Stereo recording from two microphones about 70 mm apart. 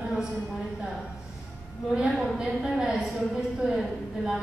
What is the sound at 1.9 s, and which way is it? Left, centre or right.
A woman's voice, centre.